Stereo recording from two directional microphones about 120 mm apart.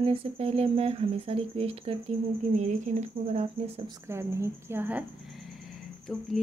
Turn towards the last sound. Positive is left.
turn(degrees=0)  # may be behind; listen again after turning